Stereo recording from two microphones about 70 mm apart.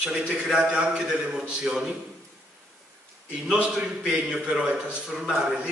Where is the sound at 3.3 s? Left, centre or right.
Centre.